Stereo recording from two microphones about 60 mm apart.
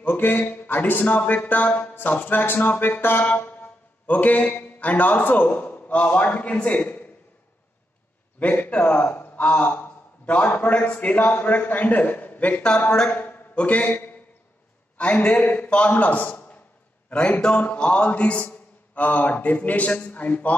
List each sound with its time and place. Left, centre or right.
0.0 s speech: left
4.1 s a man's voice: left
6.7 s a man's voice: left
8.4 s a man's voice: left
12.7 s a man's voice: centre
13.1 s a man's voice: left
17.1 s a man's voice: centre